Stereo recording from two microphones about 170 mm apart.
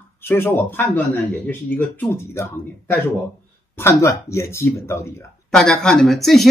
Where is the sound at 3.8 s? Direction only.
15° left (ahead or behind).